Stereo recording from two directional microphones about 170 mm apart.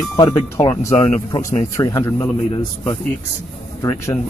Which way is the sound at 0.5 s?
15° left (ahead or behind).